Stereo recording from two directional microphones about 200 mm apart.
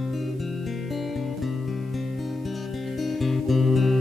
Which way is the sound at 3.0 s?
Centre (ahead or behind).